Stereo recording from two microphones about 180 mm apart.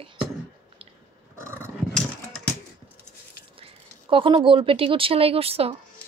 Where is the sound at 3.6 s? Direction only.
30° right (ahead or behind).